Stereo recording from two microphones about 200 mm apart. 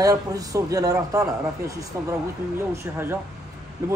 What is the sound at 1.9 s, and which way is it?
A man's voice, 15° right (ahead or behind).